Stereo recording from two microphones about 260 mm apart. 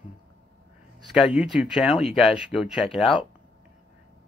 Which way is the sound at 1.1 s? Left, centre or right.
Centre.